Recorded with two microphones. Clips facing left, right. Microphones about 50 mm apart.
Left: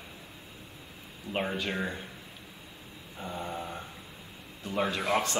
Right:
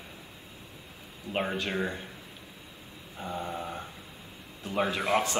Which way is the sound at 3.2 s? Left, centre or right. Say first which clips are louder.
Right 2 dB; centre.